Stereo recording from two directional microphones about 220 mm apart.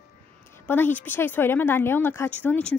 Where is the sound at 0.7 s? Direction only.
10° left (ahead or behind).